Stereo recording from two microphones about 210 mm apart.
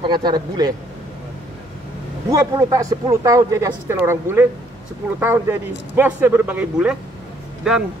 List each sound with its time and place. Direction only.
0.0 s speech: 20° right (ahead or behind)
2.2 s speech: 15° right (ahead or behind)